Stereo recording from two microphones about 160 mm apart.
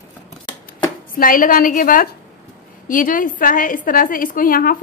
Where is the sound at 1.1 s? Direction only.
60° left (ahead or behind).